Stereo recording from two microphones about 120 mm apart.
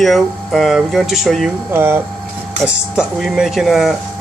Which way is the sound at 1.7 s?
20° right (ahead or behind).